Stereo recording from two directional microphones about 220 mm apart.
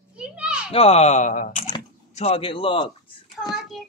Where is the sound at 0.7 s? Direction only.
25° left (ahead or behind).